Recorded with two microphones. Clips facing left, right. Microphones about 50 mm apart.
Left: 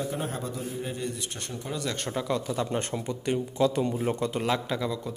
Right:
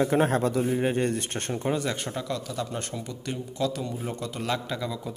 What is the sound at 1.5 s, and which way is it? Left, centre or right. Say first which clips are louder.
Speech: right 8 dB; right.